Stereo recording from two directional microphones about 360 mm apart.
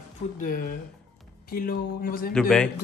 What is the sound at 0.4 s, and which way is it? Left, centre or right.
Speech, left.